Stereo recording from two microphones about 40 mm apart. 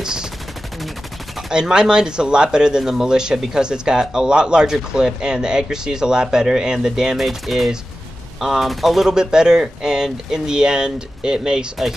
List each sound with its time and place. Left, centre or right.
0.0 s speech: centre
1.5 s speech: centre
7.2 s speech: centre
9.2 s speech: centre